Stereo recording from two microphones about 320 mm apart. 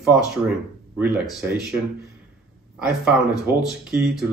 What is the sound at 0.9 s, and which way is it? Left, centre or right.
Speech, centre.